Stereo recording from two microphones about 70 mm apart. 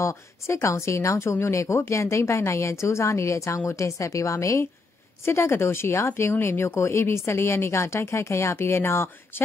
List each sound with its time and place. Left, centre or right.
0.0 s a woman's voice: left
5.2 s speech: left